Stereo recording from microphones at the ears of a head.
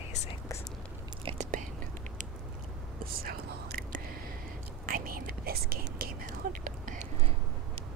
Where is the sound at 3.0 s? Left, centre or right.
Right.